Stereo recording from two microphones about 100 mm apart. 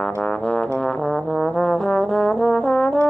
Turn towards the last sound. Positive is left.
turn(degrees=5)  # may be behind; listen again after turning